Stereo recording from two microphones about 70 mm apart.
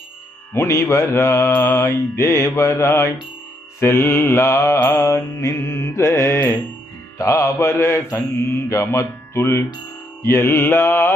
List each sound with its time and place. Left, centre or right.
0.5 s mantra: left